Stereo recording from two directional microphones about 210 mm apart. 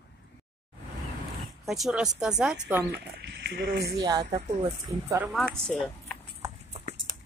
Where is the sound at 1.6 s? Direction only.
Centre (ahead or behind).